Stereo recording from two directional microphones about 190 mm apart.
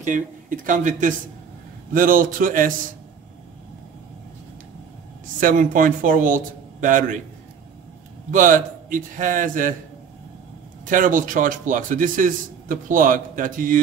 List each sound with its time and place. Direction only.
0.0 s a man's voice: 45° right (ahead or behind)
5.4 s a man's voice: 45° right (ahead or behind)
8.3 s a man's voice: 45° right (ahead or behind)
10.9 s a man's voice: 45° right (ahead or behind)